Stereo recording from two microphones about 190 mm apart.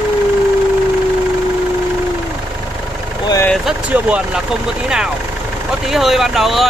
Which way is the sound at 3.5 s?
5° right (ahead or behind).